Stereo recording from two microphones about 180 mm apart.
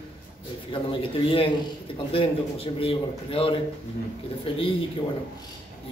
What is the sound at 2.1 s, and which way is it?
A man's voice, 30° left (ahead or behind).